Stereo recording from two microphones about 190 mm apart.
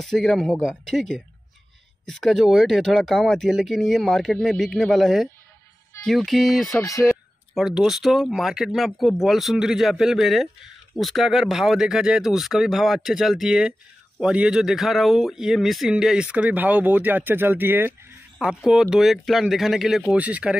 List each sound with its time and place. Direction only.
0.0 s speech: centre (ahead or behind)
6.8 s speech: 15° left (ahead or behind)
7.5 s speech: centre (ahead or behind)